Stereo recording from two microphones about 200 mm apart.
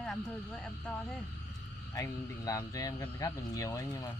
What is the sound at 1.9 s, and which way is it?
Speech, 15° left (ahead or behind).